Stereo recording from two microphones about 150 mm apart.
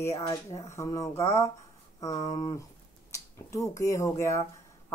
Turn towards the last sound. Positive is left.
turn(degrees=20)  # may be behind; listen again after turning